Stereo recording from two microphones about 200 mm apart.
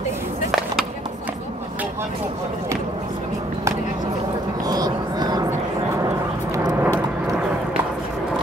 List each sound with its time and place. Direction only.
0.5 s skateboard: centre (ahead or behind)
4.6 s a sound: 20° right (ahead or behind)
6.0 s vehicle: 15° right (ahead or behind)